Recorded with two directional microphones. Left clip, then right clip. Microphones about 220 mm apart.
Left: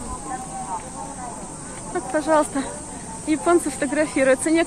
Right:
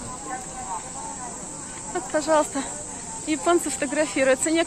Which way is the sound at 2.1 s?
10° right (ahead or behind).